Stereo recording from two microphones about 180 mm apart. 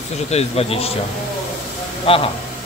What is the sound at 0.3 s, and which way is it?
Speech, 35° left (ahead or behind).